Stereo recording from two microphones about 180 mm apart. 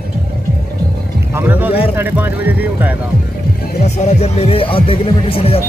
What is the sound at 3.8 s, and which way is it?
Speech, 40° left (ahead or behind).